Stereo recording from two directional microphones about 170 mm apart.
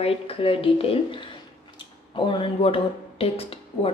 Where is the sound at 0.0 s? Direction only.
35° left (ahead or behind).